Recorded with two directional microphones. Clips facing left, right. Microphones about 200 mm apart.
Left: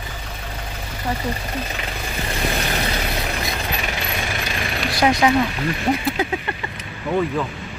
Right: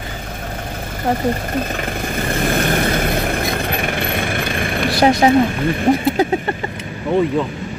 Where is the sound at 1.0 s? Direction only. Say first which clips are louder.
Right 7 dB; 50° right (ahead or behind).